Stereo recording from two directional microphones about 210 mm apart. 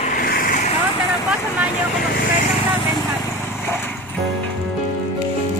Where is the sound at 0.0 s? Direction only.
45° left (ahead or behind).